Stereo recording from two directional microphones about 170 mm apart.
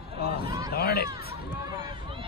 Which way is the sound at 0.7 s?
65° left (ahead or behind).